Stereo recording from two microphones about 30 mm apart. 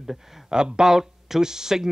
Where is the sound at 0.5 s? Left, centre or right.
Right.